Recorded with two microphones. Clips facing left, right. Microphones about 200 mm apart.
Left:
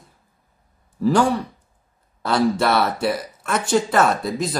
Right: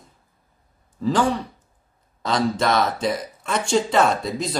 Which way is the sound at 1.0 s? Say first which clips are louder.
Left 3 dB; 10° left (ahead or behind).